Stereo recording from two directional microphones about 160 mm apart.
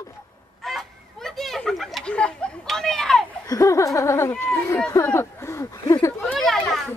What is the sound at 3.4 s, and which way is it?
Speech, 20° left (ahead or behind).